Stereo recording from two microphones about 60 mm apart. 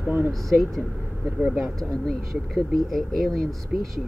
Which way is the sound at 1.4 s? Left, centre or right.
Centre.